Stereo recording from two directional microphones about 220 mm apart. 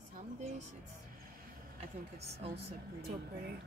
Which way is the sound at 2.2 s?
30° right (ahead or behind).